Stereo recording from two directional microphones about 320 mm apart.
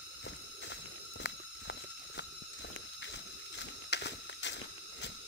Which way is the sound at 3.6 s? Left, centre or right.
Left.